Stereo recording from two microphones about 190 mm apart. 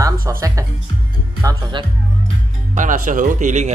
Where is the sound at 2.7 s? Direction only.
45° right (ahead or behind).